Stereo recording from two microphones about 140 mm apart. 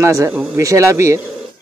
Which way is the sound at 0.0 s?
20° right (ahead or behind).